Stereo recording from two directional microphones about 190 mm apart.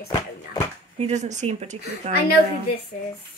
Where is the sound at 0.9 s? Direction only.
35° right (ahead or behind).